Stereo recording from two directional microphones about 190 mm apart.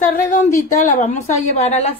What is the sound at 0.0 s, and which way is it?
A woman's voice, 45° left (ahead or behind).